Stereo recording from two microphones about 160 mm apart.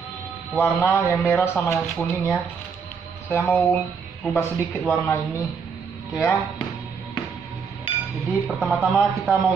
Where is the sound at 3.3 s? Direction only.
15° left (ahead or behind).